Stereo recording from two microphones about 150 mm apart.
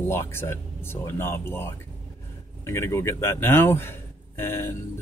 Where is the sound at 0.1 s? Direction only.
15° left (ahead or behind).